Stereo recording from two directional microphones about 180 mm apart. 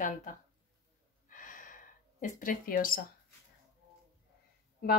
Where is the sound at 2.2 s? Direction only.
45° left (ahead or behind).